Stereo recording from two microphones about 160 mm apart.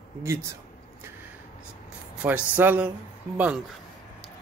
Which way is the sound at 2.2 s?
10° right (ahead or behind).